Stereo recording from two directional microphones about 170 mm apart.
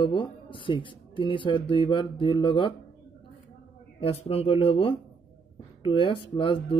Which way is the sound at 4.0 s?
35° left (ahead or behind).